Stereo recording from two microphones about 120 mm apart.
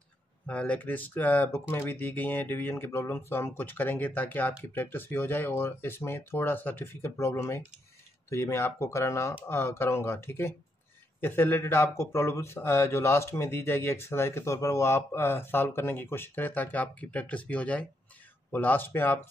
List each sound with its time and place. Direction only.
0.5 s speech: 10° left (ahead or behind)